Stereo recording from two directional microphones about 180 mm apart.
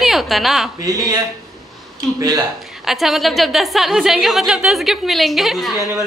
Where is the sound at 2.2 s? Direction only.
20° right (ahead or behind).